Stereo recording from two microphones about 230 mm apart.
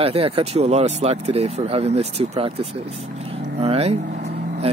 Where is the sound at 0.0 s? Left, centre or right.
Right.